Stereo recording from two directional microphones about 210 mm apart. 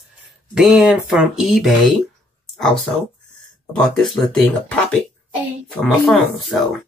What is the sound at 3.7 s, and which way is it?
Speech, centre (ahead or behind).